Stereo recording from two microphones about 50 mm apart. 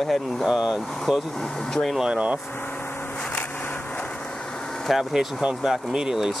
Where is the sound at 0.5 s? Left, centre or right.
Centre.